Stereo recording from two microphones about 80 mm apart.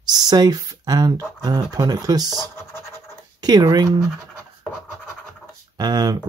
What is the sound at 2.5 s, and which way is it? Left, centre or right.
Scratch, left.